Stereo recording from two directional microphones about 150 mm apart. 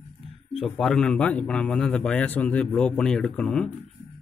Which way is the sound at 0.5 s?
Centre (ahead or behind).